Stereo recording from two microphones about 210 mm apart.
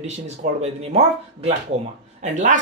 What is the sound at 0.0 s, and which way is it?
Speech, 30° right (ahead or behind).